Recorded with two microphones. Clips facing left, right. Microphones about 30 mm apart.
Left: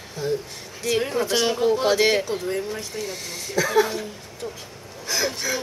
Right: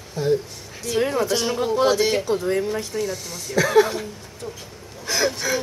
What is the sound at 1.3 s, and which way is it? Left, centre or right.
Speech, centre.